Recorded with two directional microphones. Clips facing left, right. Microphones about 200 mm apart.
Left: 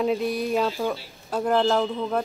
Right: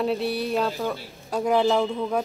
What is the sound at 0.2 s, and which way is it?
Speech, 35° right (ahead or behind).